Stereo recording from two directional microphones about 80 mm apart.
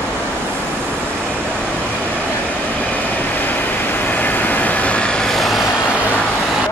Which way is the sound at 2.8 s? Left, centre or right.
Centre.